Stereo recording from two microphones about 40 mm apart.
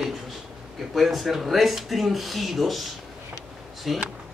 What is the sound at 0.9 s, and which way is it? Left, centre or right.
A man's voice, centre.